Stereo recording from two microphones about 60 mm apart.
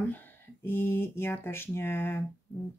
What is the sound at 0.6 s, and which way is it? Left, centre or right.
Speech, left.